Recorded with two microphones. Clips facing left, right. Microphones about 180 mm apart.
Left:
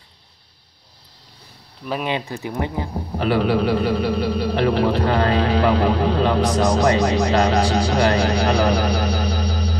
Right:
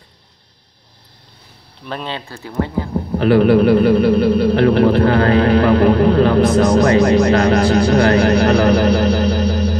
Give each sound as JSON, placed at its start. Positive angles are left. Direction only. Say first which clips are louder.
{"t": 1.9, "sound": "speech", "louder": "left 2 dB", "side_deg": 10}
{"t": 3.2, "sound": "speech", "louder": "right 7 dB", "side_deg": -55}